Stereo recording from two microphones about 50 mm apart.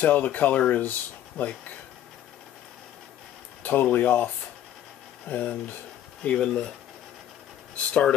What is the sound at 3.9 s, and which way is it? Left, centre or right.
Speech, left.